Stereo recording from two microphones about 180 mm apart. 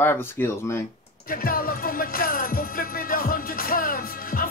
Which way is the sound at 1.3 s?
50° left (ahead or behind).